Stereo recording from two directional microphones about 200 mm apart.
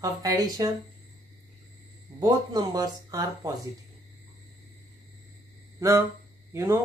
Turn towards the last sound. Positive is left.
turn(degrees=-10)  # may be behind; listen again after turning